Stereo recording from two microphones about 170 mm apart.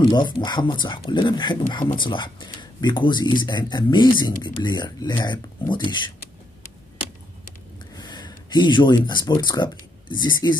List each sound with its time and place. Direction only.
0.1 s speech: 25° left (ahead or behind)
7.9 s speech: 25° left (ahead or behind)